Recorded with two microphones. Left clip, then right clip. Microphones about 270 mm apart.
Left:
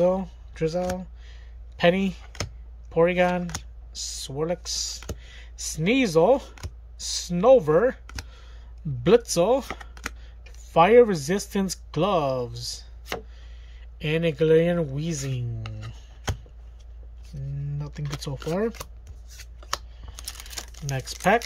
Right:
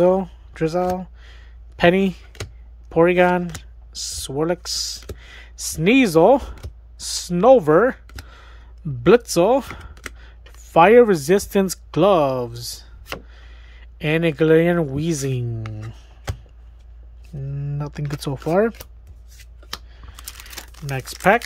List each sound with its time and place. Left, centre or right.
0.2 s speech: centre
0.9 s a sound: centre
2.9 s speech: centre
13.3 s a sound: centre
14.9 s speech: centre
17.6 s speech: centre
19.3 s shuffling cards: centre
19.9 s typing: centre
20.8 s speech: centre